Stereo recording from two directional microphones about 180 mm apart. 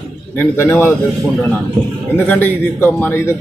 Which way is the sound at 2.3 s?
10° left (ahead or behind).